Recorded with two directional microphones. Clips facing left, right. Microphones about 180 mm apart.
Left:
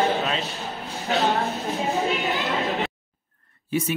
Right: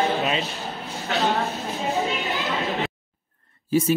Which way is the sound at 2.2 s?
Centre (ahead or behind).